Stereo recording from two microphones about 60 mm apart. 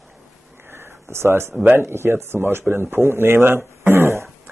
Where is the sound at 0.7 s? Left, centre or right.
Right.